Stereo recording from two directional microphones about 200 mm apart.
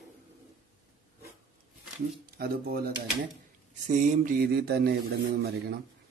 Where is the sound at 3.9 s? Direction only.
35° right (ahead or behind).